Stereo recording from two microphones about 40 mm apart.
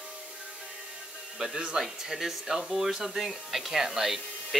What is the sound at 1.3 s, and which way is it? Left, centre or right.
Speech, centre.